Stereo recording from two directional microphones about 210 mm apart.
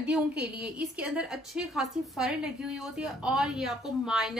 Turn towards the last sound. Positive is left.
turn(degrees=0)  # may be behind; listen again after turning